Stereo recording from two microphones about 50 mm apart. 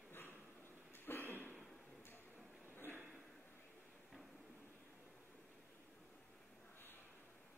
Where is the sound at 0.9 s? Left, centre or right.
Left.